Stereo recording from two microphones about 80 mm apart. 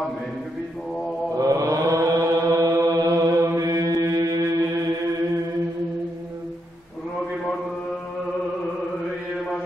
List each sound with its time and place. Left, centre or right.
1.4 s chant: right
3.6 s mantra: right